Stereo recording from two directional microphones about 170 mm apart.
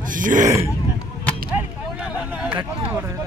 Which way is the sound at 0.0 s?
50° right (ahead or behind).